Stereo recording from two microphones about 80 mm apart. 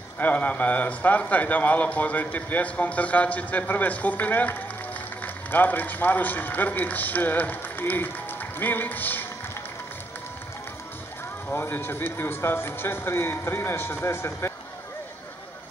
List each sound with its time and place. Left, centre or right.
0.2 s speech: centre
11.5 s speech: left